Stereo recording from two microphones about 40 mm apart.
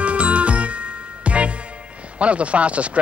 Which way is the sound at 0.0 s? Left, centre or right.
Right.